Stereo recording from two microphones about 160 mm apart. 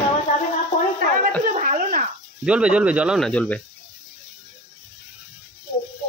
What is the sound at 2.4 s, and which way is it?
Speech, 5° right (ahead or behind).